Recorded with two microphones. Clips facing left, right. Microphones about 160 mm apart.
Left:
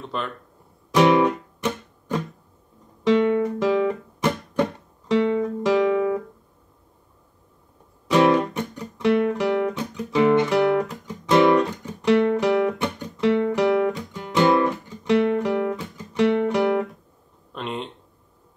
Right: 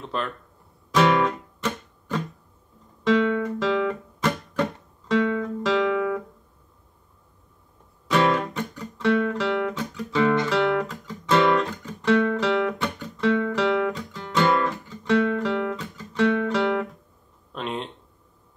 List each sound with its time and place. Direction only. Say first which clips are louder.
0.1 s speech: even; centre (ahead or behind)
0.9 s guitar: left 3 dB; 15° left (ahead or behind)
8.1 s guitar: left 4 dB; 15° left (ahead or behind)
13.9 s music: left 3 dB; 15° left (ahead or behind)
17.5 s a sound: even; centre (ahead or behind)